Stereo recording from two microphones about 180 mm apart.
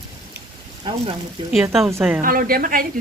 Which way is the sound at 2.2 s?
50° right (ahead or behind).